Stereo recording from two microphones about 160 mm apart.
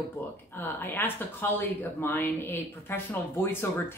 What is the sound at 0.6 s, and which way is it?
Speech, 10° left (ahead or behind).